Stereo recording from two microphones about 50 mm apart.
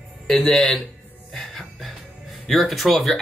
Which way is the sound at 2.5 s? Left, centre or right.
Centre.